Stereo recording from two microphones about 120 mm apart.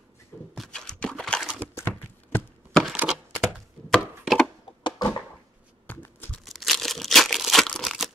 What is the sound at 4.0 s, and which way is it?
Chopping, centre (ahead or behind).